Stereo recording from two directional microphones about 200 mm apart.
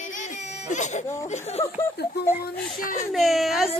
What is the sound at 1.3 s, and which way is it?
Speech, 30° left (ahead or behind).